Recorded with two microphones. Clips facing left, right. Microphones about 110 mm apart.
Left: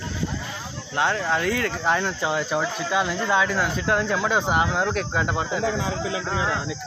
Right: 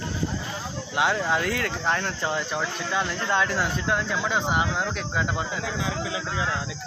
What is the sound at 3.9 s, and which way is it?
Speech, 25° left (ahead or behind).